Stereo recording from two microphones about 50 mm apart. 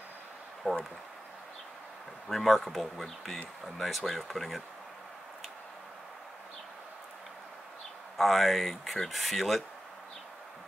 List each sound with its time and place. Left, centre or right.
0.7 s speech: left
2.2 s speech: centre
8.2 s speech: centre